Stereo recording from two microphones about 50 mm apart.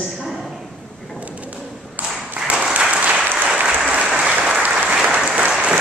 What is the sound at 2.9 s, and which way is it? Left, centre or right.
Applause, right.